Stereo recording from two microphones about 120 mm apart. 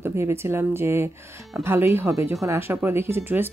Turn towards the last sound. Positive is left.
turn(degrees=-15)  # may be behind; listen again after turning